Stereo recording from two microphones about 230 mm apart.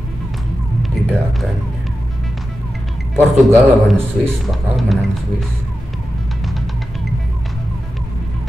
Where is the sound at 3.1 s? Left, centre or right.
Centre.